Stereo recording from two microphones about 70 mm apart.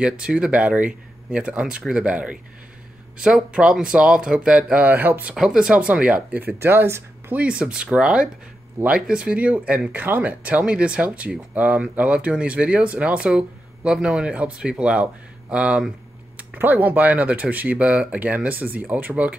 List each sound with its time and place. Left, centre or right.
0.0 s speech: centre; by 5.2 s right
5.3 s speech: centre
6.6 s speech: right
7.3 s speech: centre